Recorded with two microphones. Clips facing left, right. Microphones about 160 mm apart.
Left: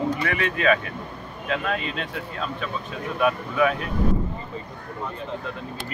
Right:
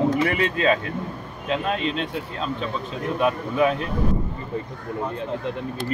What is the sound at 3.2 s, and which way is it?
Speech, 25° right (ahead or behind).